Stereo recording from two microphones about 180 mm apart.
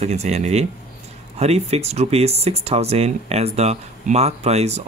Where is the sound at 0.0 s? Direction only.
35° right (ahead or behind).